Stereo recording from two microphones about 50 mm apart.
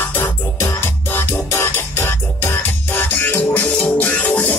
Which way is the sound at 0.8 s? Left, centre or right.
Left.